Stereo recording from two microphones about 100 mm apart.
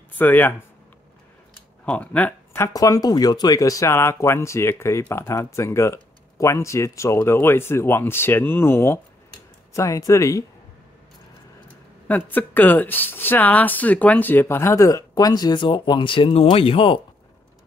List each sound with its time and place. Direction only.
0.2 s speech: 20° left (ahead or behind)
1.9 s speech: 15° left (ahead or behind)
2.7 s speech: 35° left (ahead or behind)
9.8 s speech: 35° left (ahead or behind)
12.1 s speech: 15° left (ahead or behind); by 17.0 s 65° left (ahead or behind)